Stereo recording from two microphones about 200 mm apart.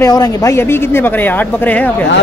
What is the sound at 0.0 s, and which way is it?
Speech, 15° left (ahead or behind).